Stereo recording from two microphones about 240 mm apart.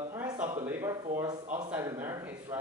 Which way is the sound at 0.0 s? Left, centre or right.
Centre.